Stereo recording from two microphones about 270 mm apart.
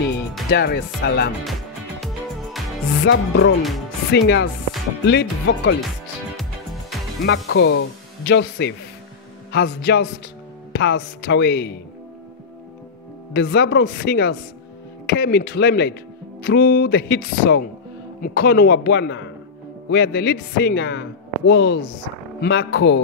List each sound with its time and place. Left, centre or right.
0.5 s speech: left
1.4 s music: centre
3.0 s music: left
4.1 s speech: left
6.9 s music: centre
7.2 s music: left
8.3 s speech: left
13.3 s speech: left